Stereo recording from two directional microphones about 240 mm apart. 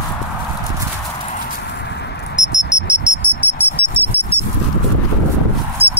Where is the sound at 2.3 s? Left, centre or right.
Centre.